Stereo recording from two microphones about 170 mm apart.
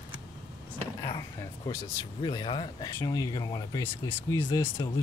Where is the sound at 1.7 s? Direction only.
25° left (ahead or behind).